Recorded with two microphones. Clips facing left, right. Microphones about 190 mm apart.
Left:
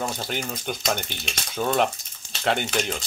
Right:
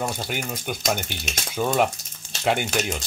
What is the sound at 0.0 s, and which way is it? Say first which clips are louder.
Speech: right 1 dB; 10° right (ahead or behind).